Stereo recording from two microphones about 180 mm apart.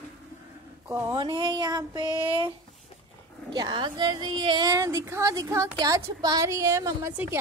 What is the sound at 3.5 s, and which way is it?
A woman's voice, 25° right (ahead or behind).